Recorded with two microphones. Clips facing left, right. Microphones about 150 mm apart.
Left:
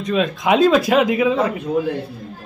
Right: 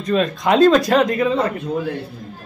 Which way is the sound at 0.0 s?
Centre (ahead or behind).